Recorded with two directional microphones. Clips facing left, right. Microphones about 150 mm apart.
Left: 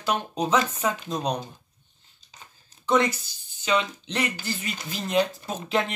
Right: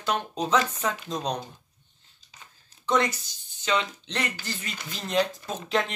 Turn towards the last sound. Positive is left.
turn(degrees=5)  # may be behind; listen again after turning